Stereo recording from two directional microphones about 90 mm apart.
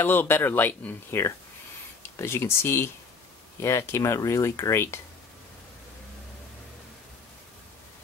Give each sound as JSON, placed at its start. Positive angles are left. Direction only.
{"t": 0.0, "sound": "speech", "side_deg": 25}